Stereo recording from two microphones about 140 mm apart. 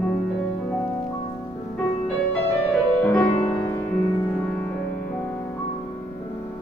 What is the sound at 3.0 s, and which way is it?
Music, 15° left (ahead or behind).